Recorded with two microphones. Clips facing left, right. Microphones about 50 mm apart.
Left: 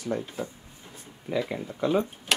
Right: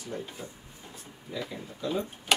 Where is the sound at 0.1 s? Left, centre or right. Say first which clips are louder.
Left 3 dB; left.